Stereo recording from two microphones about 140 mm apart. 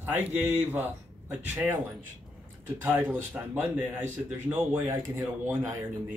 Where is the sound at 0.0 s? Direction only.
10° right (ahead or behind).